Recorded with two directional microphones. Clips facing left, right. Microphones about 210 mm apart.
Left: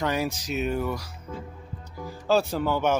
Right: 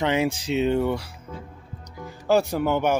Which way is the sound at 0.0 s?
25° right (ahead or behind).